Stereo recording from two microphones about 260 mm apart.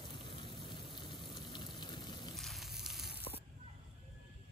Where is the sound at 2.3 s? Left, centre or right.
Centre.